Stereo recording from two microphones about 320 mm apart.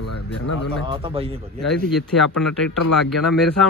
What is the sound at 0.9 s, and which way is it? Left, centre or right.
Speech, centre.